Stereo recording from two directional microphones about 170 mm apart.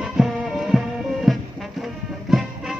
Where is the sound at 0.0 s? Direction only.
Centre (ahead or behind).